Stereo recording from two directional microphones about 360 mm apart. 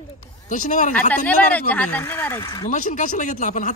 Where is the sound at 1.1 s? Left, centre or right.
Centre; by 3.7 s left.